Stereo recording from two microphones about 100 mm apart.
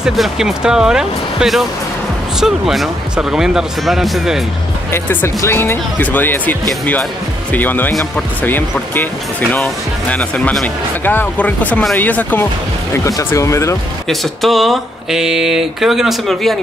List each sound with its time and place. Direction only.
0.0 s speech: 5° right (ahead or behind)
4.9 s speech: 25° left (ahead or behind)
7.5 s speech: 20° left (ahead or behind)
12.9 s speech: 30° left (ahead or behind)
14.0 s speech: centre (ahead or behind)